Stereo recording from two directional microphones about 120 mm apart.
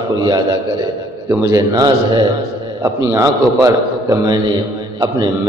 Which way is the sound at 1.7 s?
35° right (ahead or behind).